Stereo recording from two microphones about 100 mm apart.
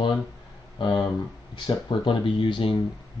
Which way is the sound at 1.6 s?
55° left (ahead or behind).